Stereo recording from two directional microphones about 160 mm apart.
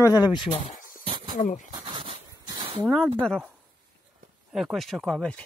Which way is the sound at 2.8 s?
5° left (ahead or behind).